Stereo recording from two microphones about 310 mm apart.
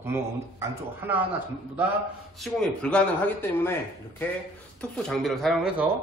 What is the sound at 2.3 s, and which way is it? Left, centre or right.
A man's voice, centre.